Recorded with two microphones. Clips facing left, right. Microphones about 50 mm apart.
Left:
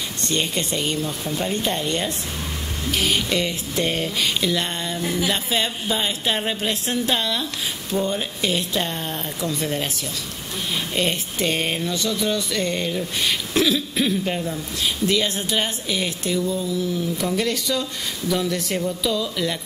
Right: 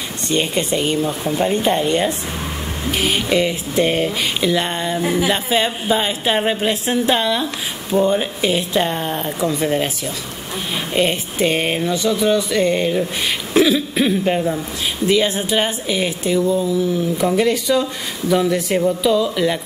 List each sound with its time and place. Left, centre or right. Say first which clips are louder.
0.3 s speech: right 6 dB; centre
10.9 s speech: right 7 dB; centre